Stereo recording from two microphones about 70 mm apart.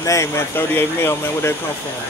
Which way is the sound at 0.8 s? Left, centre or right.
Left.